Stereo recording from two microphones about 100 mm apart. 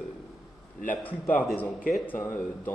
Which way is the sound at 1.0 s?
15° left (ahead or behind).